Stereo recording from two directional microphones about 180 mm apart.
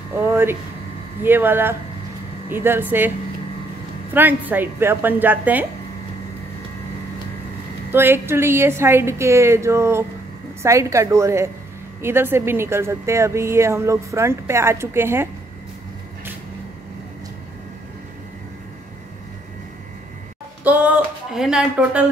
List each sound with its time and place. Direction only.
0.1 s speech: 15° right (ahead or behind)
4.1 s speech: 10° right (ahead or behind)
7.9 s speech: 10° right (ahead or behind)
20.6 s speech: 10° right (ahead or behind)